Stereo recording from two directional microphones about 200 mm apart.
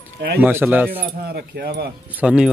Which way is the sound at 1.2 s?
55° right (ahead or behind).